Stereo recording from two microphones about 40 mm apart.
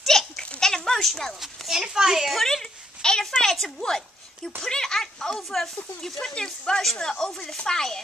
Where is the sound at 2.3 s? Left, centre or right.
Centre.